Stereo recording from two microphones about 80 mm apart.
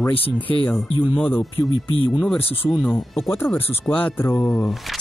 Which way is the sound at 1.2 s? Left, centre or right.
Left.